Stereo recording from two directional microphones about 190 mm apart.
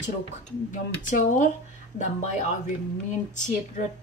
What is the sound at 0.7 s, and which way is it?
Speech, 40° left (ahead or behind).